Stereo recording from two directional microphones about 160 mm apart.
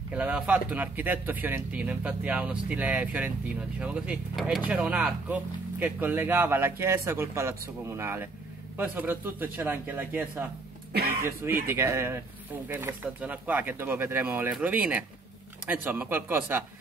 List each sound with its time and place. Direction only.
0.1 s speech: 10° right (ahead or behind)